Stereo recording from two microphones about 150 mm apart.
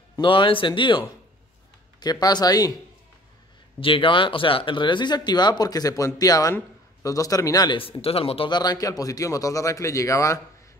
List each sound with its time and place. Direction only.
0.2 s speech: 35° left (ahead or behind)
3.8 s speech: 35° left (ahead or behind)
7.8 s speech: 40° left (ahead or behind); by 10.4 s 20° left (ahead or behind)